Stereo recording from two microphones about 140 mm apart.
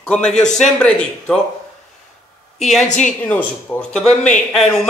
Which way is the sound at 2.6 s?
Centre (ahead or behind).